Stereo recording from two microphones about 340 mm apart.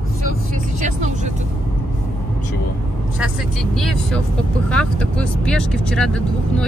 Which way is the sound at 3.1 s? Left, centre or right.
Centre.